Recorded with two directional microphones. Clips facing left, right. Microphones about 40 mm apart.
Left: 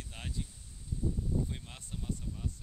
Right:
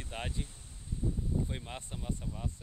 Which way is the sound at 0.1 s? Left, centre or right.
Right.